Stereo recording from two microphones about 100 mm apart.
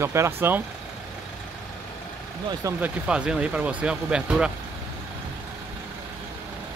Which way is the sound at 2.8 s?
10° right (ahead or behind).